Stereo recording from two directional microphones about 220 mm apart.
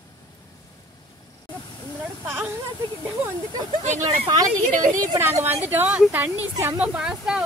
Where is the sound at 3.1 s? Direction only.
10° right (ahead or behind).